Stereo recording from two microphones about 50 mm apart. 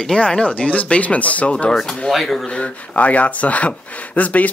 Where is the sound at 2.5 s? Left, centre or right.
Left.